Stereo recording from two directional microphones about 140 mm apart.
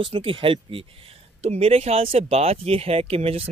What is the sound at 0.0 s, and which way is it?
Speech, 40° right (ahead or behind).